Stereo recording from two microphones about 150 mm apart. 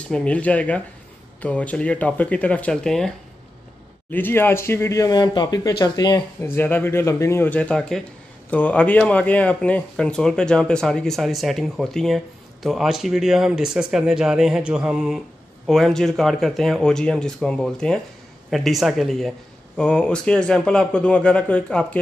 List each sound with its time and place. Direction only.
0.1 s a man's voice: 10° left (ahead or behind)
4.1 s speech: 15° left (ahead or behind)
6.4 s a man's voice: 15° left (ahead or behind)